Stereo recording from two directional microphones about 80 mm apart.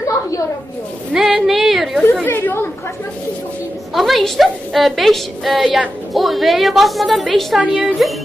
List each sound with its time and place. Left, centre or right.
1.1 s a sound: centre
2.2 s chatter: left
3.9 s a woman's voice: centre